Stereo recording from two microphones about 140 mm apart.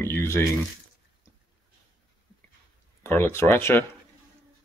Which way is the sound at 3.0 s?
15° left (ahead or behind).